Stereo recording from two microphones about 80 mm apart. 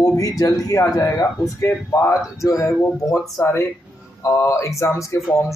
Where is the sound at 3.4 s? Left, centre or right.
Left.